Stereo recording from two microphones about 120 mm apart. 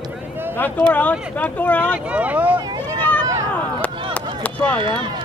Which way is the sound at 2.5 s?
35° right (ahead or behind).